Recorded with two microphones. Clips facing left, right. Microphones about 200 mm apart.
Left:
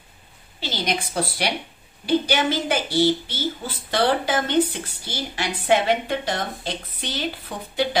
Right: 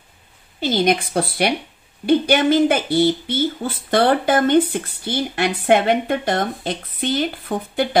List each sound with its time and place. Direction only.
0.6 s a woman's voice: 50° right (ahead or behind)